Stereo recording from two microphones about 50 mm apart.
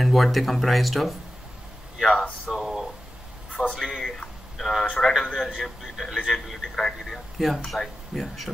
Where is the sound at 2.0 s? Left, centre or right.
Centre.